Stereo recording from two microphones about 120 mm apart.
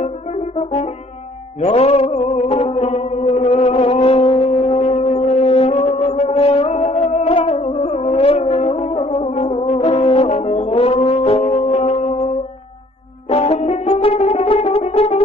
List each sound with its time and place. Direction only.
0.0 s brass instrument: 60° left (ahead or behind)
1.6 s music: 55° left (ahead or behind)
13.3 s brass instrument: 60° left (ahead or behind)